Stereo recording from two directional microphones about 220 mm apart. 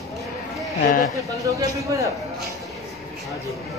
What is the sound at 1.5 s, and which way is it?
Speech, 15° right (ahead or behind).